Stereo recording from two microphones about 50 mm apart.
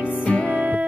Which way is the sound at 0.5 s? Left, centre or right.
Right.